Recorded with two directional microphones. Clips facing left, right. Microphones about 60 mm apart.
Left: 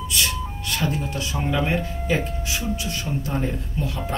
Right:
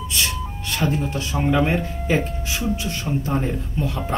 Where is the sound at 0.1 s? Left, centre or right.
Right.